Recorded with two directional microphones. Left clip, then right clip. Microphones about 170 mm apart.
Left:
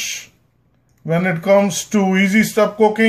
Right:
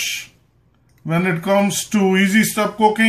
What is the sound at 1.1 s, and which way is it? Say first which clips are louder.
Speech: left 3 dB; 45° left (ahead or behind).